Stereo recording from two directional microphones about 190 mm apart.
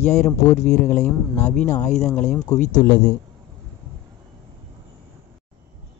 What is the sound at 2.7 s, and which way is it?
Speech, 20° left (ahead or behind).